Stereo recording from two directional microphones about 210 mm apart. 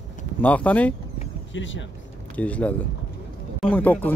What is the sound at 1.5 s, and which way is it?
Speech, 60° left (ahead or behind).